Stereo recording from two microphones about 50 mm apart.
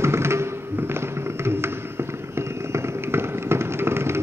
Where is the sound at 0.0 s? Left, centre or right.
Right.